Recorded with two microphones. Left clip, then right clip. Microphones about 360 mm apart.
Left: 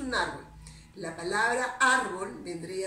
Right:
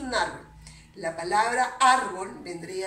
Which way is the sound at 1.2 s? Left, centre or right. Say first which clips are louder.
Right 4 dB; centre.